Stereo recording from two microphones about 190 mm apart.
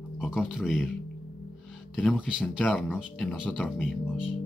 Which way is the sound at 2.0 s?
5° right (ahead or behind).